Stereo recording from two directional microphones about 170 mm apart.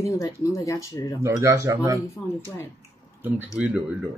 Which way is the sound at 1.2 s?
20° right (ahead or behind).